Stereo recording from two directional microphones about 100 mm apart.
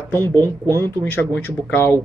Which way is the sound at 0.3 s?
35° right (ahead or behind).